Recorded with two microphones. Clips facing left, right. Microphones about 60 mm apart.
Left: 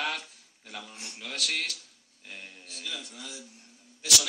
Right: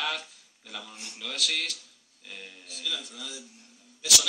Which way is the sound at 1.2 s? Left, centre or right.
Left.